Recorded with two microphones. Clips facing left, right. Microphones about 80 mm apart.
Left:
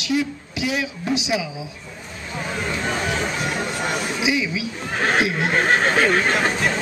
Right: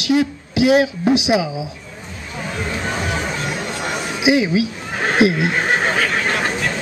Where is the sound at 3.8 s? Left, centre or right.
Centre.